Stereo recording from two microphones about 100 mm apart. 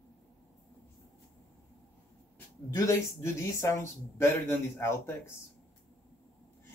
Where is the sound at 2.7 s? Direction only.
30° left (ahead or behind).